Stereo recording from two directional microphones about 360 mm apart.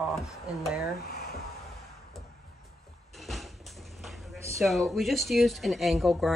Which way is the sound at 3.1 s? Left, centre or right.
Centre.